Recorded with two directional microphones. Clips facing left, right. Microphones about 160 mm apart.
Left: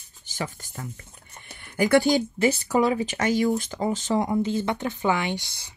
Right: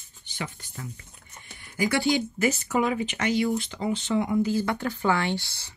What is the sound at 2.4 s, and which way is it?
Speech, 35° left (ahead or behind).